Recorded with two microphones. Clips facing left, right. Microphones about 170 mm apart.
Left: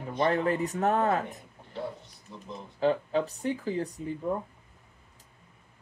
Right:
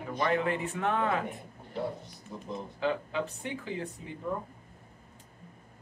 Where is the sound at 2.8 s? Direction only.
35° left (ahead or behind).